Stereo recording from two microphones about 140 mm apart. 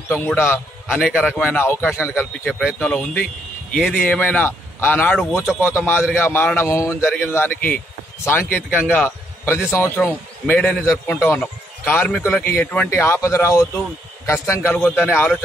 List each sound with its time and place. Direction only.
0.1 s speech: 15° left (ahead or behind)
8.9 s a sound: 15° left (ahead or behind)
9.7 s a man's voice: 15° left (ahead or behind)